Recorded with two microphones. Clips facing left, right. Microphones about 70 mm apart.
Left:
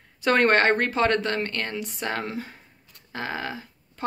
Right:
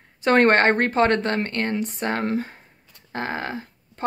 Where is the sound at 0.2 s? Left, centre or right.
Right.